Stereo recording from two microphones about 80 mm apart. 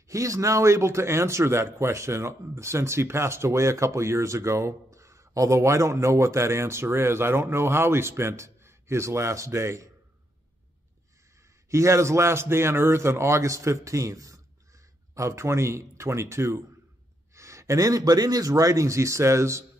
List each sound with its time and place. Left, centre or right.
0.1 s speech: right
11.7 s speech: right